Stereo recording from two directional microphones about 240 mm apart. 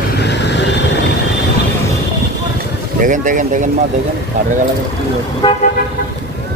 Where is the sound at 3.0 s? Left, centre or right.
Right.